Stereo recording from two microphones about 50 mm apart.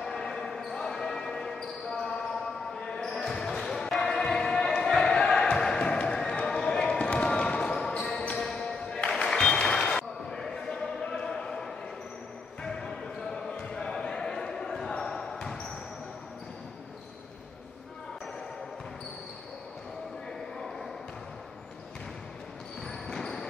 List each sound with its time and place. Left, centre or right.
0.0 s basketball bounce: centre
7.0 s basketball bounce: left; by 15.5 s centre
22.8 s basketball bounce: centre